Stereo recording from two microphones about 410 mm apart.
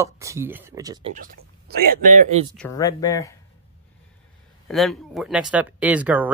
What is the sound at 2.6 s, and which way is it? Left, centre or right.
Speech, centre.